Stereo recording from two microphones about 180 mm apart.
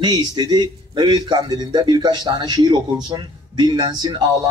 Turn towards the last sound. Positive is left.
turn(degrees=-20)  # may be behind; listen again after turning